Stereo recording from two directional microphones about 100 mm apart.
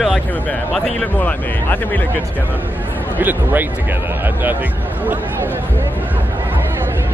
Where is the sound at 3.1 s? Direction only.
20° right (ahead or behind).